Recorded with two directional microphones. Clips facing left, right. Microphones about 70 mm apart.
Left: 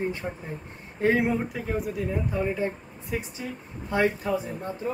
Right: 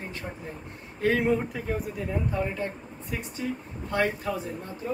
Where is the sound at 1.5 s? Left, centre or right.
Centre.